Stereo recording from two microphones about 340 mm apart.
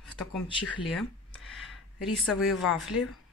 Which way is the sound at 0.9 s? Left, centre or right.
Centre.